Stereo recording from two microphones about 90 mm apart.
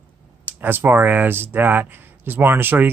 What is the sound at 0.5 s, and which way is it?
Speech, 20° right (ahead or behind).